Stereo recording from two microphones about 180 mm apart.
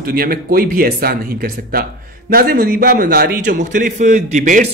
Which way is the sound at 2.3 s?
60° right (ahead or behind).